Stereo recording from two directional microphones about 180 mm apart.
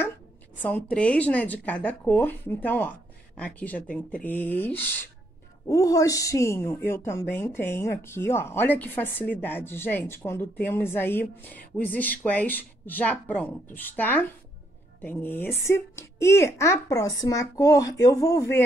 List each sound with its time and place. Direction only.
0.6 s a woman's voice: 10° left (ahead or behind)